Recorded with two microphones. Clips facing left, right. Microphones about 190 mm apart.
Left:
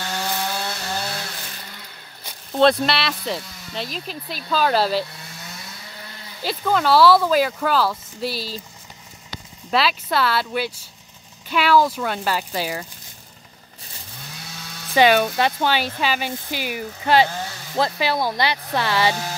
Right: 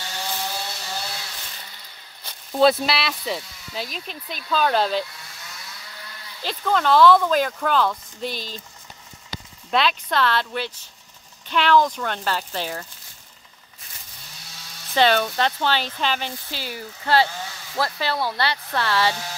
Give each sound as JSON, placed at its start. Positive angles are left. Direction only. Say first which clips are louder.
{"t": 0.0, "sound": "chainsaw", "louder": "left 4 dB", "side_deg": 60}
{"t": 2.5, "sound": "speech", "louder": "left 1 dB", "side_deg": -5}
{"t": 6.4, "sound": "speech", "louder": "left 2 dB", "side_deg": 5}
{"t": 9.7, "sound": "speech", "louder": "left 1 dB", "side_deg": 5}
{"t": 15.0, "sound": "speech", "louder": "left 3 dB", "side_deg": 10}